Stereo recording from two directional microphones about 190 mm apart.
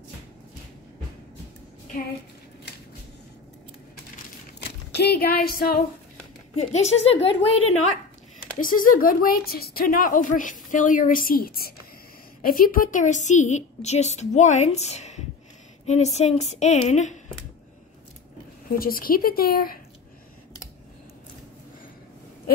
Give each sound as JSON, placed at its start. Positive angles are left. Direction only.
{"t": 4.6, "sound": "speech", "side_deg": 60}
{"t": 6.5, "sound": "a woman's voice", "side_deg": 35}
{"t": 8.5, "sound": "a woman's voice", "side_deg": 45}
{"t": 18.7, "sound": "a woman's voice", "side_deg": 50}